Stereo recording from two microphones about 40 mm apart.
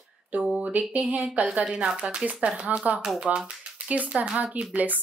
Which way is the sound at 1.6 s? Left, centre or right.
Centre.